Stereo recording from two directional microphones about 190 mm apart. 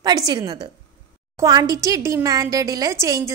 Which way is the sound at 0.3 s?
20° right (ahead or behind).